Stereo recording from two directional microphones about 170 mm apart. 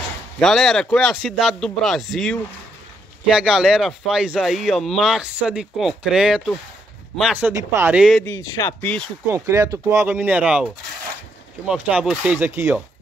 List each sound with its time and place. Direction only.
0.4 s speech: centre (ahead or behind); by 8.0 s 15° right (ahead or behind)
8.0 s speech: centre (ahead or behind)
8.3 s speech: 15° left (ahead or behind)
9.3 s speech: 15° right (ahead or behind)